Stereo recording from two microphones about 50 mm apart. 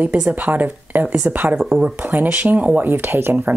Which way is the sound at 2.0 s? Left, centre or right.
Right.